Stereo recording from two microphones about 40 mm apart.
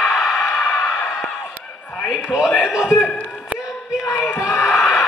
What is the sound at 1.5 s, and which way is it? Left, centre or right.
Run, left.